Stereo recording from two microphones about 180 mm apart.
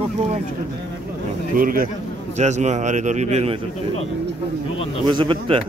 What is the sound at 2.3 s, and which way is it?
A man's voice, 40° right (ahead or behind).